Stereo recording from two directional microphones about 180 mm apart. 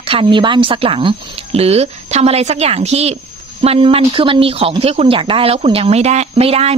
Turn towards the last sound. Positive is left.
turn(degrees=-35)  # may be behind; listen again after turning